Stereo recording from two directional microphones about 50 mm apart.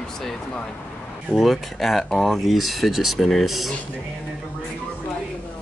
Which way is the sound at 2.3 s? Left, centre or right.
Centre.